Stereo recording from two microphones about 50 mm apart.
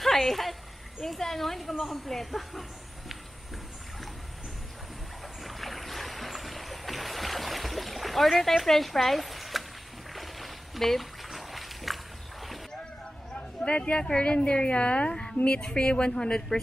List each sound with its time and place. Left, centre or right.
0.0 s a woman's voice: centre
5.4 s boat: centre
10.1 s a sound: centre
13.3 s a woman's voice: centre